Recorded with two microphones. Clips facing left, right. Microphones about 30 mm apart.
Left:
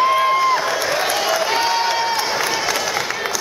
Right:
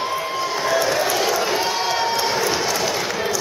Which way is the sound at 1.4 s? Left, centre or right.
Left.